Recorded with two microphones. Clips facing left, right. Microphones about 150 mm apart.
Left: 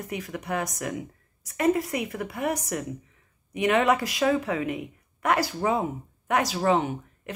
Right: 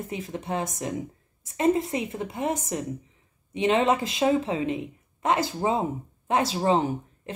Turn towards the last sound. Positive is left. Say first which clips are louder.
# right 3 dB
turn(degrees=-30)  # may be behind; listen again after turning